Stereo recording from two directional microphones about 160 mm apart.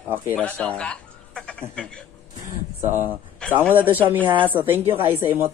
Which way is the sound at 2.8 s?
15° right (ahead or behind).